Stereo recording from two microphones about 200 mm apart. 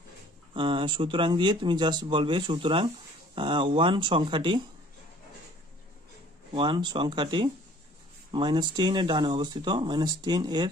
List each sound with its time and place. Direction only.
0.6 s speech: 25° right (ahead or behind)
6.5 s speech: 25° right (ahead or behind)